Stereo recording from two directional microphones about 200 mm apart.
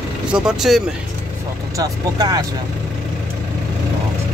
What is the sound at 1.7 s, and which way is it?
Speech, 20° right (ahead or behind).